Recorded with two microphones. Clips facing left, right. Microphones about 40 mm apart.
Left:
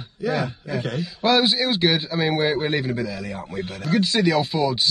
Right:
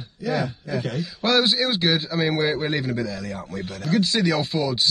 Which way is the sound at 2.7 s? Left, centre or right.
Centre.